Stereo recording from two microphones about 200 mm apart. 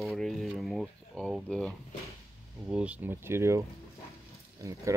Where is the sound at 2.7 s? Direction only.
5° right (ahead or behind).